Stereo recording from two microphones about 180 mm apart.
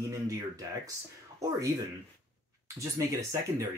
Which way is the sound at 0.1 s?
20° right (ahead or behind).